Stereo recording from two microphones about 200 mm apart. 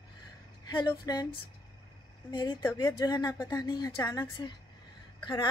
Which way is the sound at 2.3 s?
20° left (ahead or behind).